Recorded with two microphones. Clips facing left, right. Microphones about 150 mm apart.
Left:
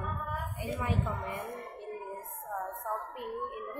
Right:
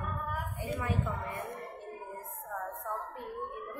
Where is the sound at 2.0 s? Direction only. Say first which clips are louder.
Left 2 dB; 20° left (ahead or behind).